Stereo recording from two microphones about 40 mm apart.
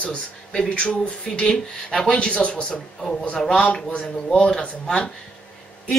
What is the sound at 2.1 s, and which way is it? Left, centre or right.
Speech, left.